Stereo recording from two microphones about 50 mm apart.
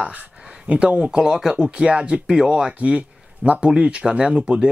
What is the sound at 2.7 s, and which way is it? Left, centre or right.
Speech, right.